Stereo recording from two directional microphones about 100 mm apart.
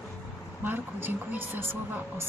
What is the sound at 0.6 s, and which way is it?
A woman's voice, 20° right (ahead or behind).